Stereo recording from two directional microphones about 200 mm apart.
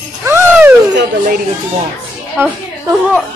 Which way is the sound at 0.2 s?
10° right (ahead or behind).